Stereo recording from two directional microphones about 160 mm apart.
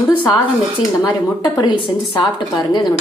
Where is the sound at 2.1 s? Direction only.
30° left (ahead or behind).